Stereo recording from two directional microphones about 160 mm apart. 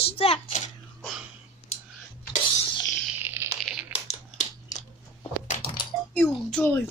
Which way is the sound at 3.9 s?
45° left (ahead or behind).